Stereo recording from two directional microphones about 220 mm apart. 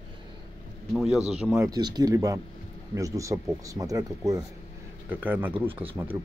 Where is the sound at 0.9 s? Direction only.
5° right (ahead or behind).